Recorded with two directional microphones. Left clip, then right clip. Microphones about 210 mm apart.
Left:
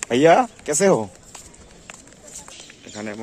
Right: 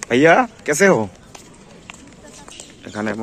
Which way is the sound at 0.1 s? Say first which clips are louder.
Right 2 dB; 15° left (ahead or behind).